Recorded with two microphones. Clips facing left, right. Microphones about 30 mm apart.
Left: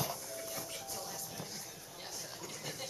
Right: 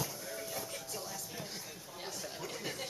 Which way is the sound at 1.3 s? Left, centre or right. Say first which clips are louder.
Right 2 dB; centre.